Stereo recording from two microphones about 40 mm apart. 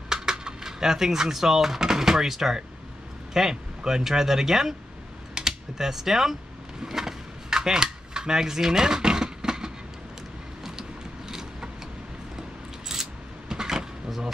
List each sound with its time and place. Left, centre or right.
0.1 s speech: centre
5.4 s typing: centre
5.8 s speech: centre
6.8 s a sound: centre